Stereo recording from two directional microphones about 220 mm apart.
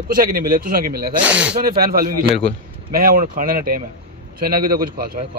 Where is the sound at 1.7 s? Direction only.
40° right (ahead or behind).